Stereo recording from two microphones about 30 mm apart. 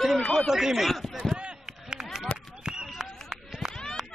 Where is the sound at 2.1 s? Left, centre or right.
Right.